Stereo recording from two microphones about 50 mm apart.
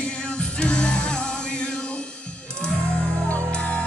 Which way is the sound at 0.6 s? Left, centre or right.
Left.